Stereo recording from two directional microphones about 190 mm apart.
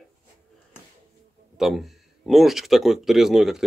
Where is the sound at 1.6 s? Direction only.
Centre (ahead or behind).